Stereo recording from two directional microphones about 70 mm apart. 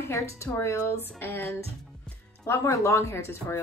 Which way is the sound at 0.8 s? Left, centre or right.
Left.